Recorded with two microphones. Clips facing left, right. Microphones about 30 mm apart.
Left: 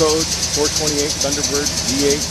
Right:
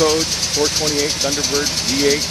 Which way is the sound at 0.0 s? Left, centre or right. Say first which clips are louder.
Even; centre.